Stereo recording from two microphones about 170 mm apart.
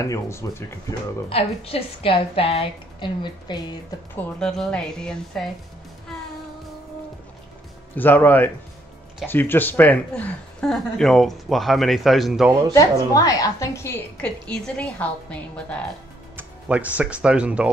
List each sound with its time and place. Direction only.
0.0 s a woman's voice: 20° left (ahead or behind)
1.3 s a woman's voice: 35° left (ahead or behind)
4.1 s speech: 5° left (ahead or behind)
7.9 s a woman's voice: 10° left (ahead or behind)
13.1 s a woman's voice: 20° left (ahead or behind)
16.3 s speech: 10° right (ahead or behind)